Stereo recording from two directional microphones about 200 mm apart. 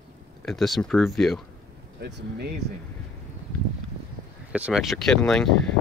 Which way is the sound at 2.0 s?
55° right (ahead or behind).